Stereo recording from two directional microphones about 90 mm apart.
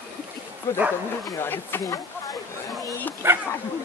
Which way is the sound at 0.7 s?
35° left (ahead or behind).